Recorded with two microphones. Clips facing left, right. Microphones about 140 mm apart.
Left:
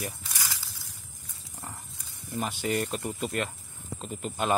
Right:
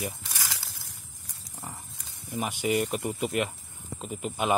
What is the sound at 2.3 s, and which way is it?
A man's voice, 15° right (ahead or behind).